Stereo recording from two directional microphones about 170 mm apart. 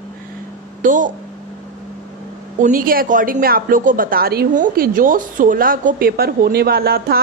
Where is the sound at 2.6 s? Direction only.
55° right (ahead or behind).